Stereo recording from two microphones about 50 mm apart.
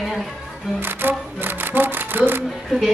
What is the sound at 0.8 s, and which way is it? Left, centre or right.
Music, right.